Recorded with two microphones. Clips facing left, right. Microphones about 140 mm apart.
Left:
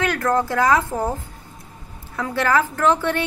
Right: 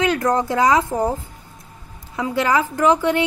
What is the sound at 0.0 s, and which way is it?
Speech, 20° right (ahead or behind).